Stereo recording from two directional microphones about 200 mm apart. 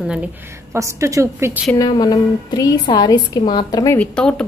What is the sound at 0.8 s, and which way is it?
Speech, 15° right (ahead or behind).